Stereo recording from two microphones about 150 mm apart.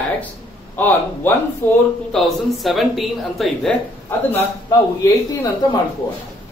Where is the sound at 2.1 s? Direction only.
Centre (ahead or behind).